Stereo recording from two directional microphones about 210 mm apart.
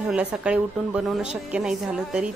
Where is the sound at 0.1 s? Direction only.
5° right (ahead or behind).